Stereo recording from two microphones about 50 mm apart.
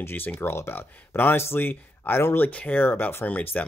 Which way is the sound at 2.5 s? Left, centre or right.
Left.